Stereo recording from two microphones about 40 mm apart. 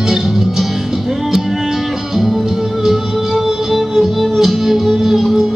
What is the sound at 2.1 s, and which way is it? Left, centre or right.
Music, centre.